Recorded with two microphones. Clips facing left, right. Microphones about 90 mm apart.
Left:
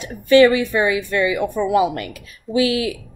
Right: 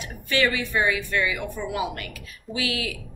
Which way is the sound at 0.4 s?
20° left (ahead or behind).